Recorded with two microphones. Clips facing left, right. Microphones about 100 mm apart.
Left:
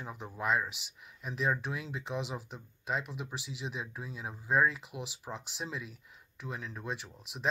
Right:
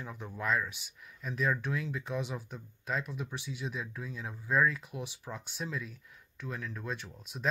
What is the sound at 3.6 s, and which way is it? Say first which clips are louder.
Speech: right 1 dB; 25° left (ahead or behind).